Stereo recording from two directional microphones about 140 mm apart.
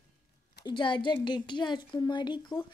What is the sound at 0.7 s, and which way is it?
A woman's voice, 35° left (ahead or behind).